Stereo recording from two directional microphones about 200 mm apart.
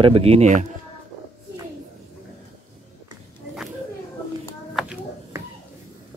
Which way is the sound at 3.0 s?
5° right (ahead or behind).